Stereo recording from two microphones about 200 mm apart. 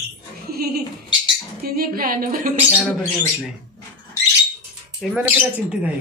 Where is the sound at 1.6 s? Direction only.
45° right (ahead or behind).